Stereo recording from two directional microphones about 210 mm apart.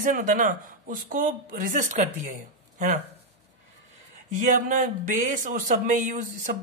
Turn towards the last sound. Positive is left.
turn(degrees=-35)  # may be behind; listen again after turning